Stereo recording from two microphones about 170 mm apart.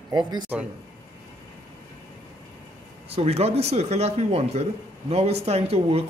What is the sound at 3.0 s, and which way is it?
Speech, 35° right (ahead or behind).